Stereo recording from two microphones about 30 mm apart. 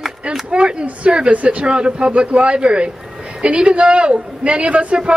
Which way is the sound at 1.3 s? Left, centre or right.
Right.